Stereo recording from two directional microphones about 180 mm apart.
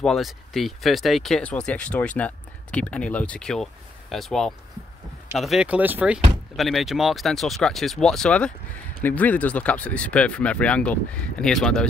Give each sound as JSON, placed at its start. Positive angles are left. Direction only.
{"t": 0.0, "sound": "speech", "side_deg": 0}